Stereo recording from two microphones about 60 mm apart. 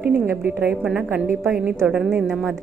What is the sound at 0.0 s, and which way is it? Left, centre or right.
Speech, right.